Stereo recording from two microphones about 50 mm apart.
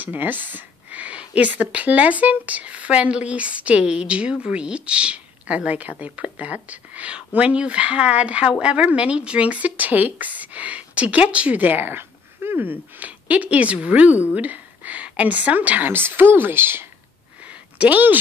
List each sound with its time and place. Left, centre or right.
0.0 s speech: right
13.0 s a woman's voice: right
15.9 s speech: right
17.5 s a sound: right